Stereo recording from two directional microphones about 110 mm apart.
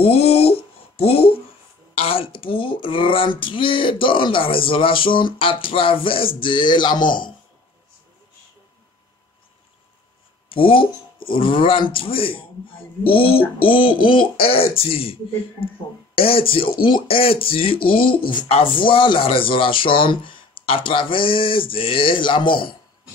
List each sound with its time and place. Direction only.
0.0 s a sound: 65° left (ahead or behind)
2.0 s speech: 60° left (ahead or behind)
10.5 s a man's voice: 55° left (ahead or behind)
16.2 s a man's voice: 55° left (ahead or behind)